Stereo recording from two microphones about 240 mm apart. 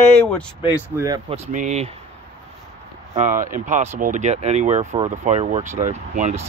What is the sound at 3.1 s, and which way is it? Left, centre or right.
Speech, right.